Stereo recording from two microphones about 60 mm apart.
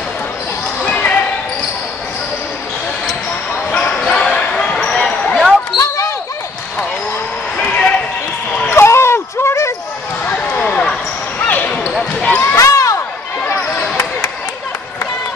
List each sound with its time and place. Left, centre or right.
0.8 s basketball bounce: left
3.7 s basketball bounce: centre
5.8 s basketball bounce: left
7.5 s basketball bounce: left
8.6 s a sound: left
10.2 s basketball bounce: left
10.6 s basketball bounce: centre
11.3 s basketball bounce: left
12.5 s basketball bounce: left